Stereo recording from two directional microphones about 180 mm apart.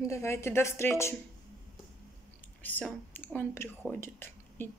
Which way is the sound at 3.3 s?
10° left (ahead or behind).